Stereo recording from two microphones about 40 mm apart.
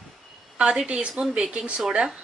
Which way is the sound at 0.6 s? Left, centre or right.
Right.